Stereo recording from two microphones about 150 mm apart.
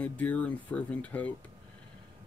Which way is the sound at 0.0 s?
10° left (ahead or behind).